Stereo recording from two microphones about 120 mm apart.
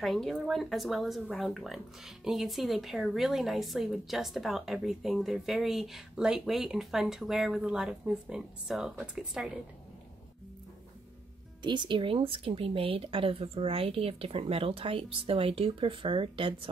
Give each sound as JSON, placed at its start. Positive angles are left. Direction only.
{"t": 0.0, "sound": "speech", "side_deg": 0}
{"t": 11.6, "sound": "speech", "side_deg": -40}